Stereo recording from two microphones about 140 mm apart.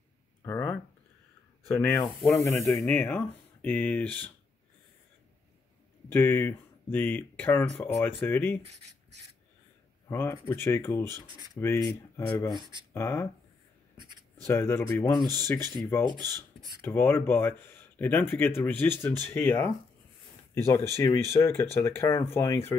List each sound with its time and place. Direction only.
0.4 s a sound: 15° left (ahead or behind)
1.7 s speech: 15° left (ahead or behind)
2.0 s snake: centre (ahead or behind)
2.9 s speech: 15° left (ahead or behind)
6.0 s speech: 15° left (ahead or behind)
10.0 s speech: 20° left (ahead or behind)
14.4 s speech: 20° left (ahead or behind)